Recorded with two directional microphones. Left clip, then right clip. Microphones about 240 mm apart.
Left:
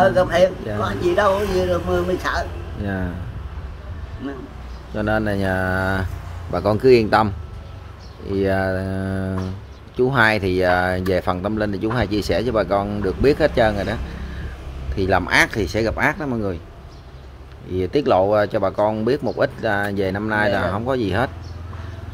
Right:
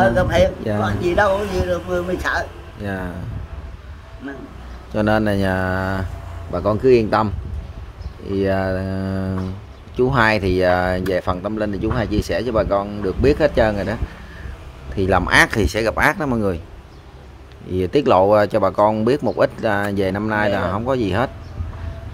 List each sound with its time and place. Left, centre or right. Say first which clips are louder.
0.0 s speech: even; centre
0.7 s speech: right 4 dB; right
1.0 s speech: even; centre
2.8 s speech: right 1 dB; right
4.9 s speech: right 3 dB; right
15.0 s speech: right 2 dB; centre
17.7 s speech: right 2 dB; centre